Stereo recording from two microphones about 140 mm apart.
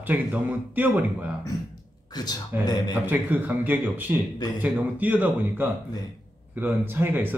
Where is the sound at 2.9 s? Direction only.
15° right (ahead or behind).